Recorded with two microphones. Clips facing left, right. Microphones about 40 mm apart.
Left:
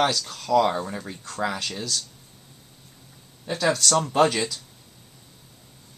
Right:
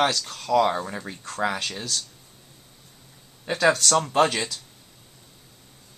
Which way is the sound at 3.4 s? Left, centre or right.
Right.